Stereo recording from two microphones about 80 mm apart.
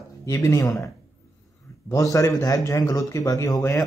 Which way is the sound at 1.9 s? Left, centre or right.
Left.